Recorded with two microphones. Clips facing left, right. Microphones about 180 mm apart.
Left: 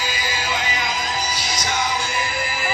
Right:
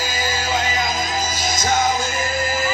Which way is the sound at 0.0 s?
45° right (ahead or behind).